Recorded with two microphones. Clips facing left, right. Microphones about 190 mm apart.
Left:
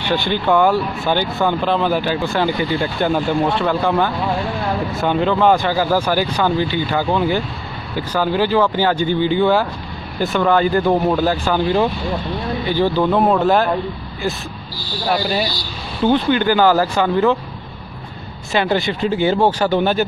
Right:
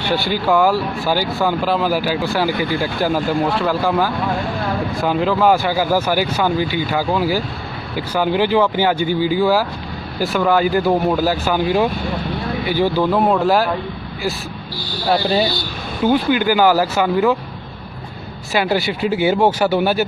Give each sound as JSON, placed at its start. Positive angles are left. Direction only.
{"t": 0.0, "sound": "speech", "side_deg": -10}
{"t": 15.2, "sound": "speech", "side_deg": -25}
{"t": 16.0, "sound": "speech", "side_deg": -10}
{"t": 18.5, "sound": "speech", "side_deg": -5}